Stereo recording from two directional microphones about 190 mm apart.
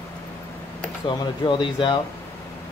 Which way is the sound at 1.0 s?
20° left (ahead or behind).